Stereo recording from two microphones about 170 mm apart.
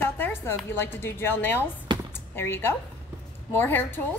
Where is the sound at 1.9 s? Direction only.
25° right (ahead or behind).